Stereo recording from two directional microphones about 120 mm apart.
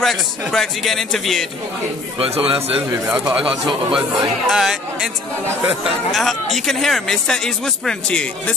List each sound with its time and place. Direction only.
0.0 s a man's voice: centre (ahead or behind)
2.1 s a man's voice: 55° right (ahead or behind)
3.1 s speech: 10° right (ahead or behind)
6.1 s speech: centre (ahead or behind)